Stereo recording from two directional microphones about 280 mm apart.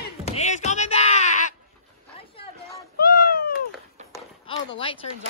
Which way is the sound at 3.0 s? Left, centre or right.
Left.